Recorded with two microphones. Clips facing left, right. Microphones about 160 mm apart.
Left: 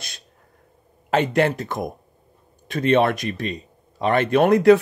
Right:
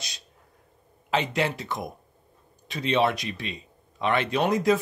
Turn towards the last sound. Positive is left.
turn(degrees=65)  # may be behind; listen again after turning